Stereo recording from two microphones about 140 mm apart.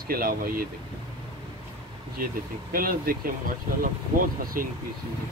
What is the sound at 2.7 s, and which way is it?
Speech, 90° right.